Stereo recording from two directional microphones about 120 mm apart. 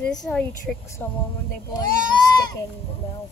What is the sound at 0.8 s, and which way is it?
Speech, 25° left (ahead or behind).